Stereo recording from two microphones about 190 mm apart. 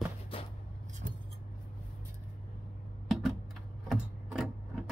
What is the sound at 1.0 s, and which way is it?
Scissors, 45° right (ahead or behind).